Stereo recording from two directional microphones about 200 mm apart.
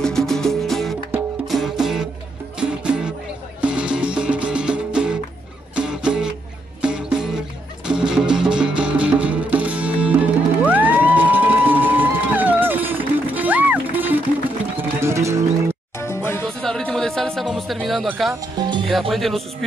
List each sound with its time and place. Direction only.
0.0 s music: centre (ahead or behind); by 15.3 s 15° right (ahead or behind)
16.0 s music: 15° left (ahead or behind)
18.9 s speech: centre (ahead or behind)